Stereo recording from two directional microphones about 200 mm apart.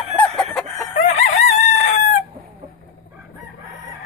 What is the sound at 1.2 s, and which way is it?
Chicken, 35° left (ahead or behind).